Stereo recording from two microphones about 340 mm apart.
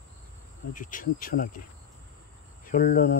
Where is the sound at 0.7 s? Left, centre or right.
Left.